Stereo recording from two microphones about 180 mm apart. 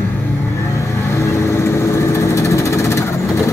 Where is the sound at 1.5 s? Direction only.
15° left (ahead or behind).